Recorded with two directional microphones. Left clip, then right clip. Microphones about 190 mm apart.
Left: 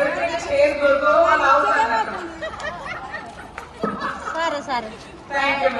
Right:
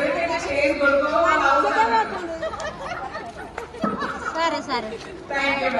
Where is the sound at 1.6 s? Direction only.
10° left (ahead or behind).